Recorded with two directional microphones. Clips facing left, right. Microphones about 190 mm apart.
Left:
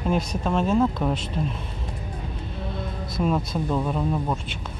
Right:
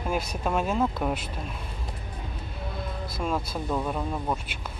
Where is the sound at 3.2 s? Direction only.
5° left (ahead or behind).